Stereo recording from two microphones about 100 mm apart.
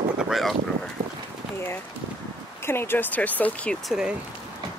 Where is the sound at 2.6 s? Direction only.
25° left (ahead or behind).